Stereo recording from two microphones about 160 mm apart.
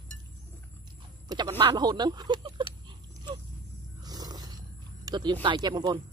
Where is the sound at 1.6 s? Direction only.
25° right (ahead or behind).